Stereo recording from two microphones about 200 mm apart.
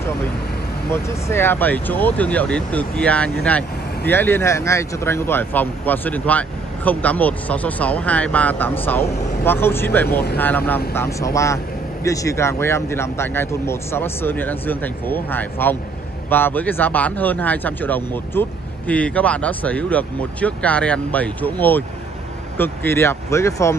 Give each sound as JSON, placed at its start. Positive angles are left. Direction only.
{"t": 0.8, "sound": "speech", "side_deg": 10}